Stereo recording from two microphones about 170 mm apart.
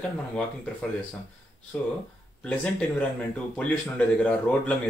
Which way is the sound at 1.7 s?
10° left (ahead or behind).